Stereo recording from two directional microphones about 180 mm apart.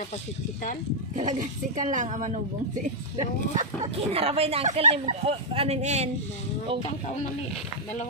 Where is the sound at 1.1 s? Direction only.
45° right (ahead or behind).